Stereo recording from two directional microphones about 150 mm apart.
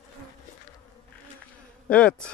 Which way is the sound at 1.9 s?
5° left (ahead or behind).